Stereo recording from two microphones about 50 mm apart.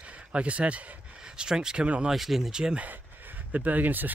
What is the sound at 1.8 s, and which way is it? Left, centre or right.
Speech, right.